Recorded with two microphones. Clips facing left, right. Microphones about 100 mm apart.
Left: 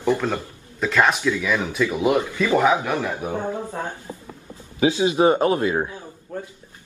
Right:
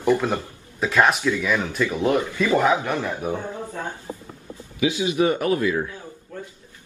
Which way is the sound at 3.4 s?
45° left (ahead or behind).